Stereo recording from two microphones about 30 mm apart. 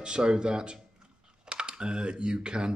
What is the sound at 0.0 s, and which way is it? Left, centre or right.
Speech, right.